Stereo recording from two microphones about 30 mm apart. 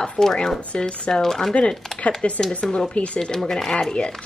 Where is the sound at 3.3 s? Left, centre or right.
Centre.